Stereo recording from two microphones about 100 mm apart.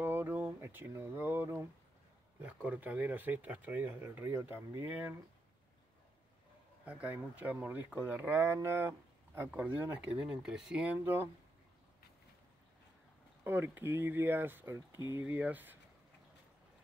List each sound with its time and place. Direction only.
0.0 s a sound: 20° right (ahead or behind)
2.4 s speech: 15° right (ahead or behind)
6.9 s speech: 15° right (ahead or behind)
10.1 s speech: 10° right (ahead or behind)
13.4 s speech: 20° right (ahead or behind)